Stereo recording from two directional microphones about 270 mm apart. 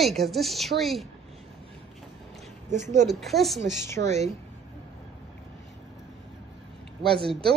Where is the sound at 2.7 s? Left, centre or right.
Right.